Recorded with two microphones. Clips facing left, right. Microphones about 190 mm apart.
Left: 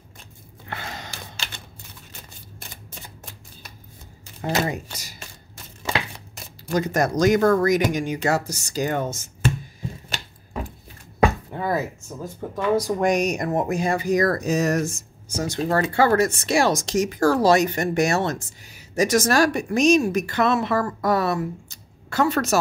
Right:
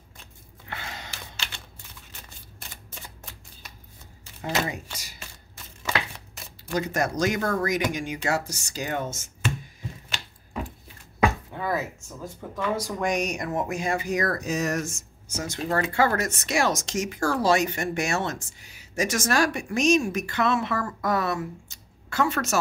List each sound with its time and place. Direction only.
0.7 s gasp: 40° left (ahead or behind)
4.4 s speech: 40° left (ahead or behind)
6.7 s speech: 40° left (ahead or behind)
11.5 s a sound: 35° left (ahead or behind)
12.5 s speech: 35° left (ahead or behind)